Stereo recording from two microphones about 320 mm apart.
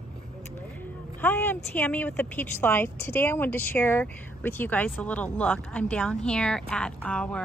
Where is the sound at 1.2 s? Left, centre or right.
Centre.